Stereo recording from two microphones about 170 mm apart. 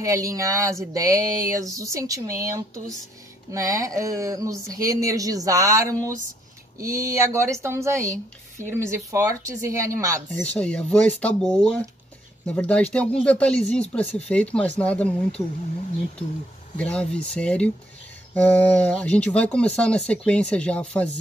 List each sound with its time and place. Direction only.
0.0 s a sound: 20° right (ahead or behind)
6.8 s a woman's voice: 20° right (ahead or behind)
10.4 s speech: 5° left (ahead or behind)
16.7 s speech: 5° left (ahead or behind)